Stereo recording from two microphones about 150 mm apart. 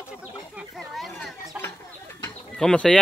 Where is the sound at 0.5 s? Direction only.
Centre (ahead or behind).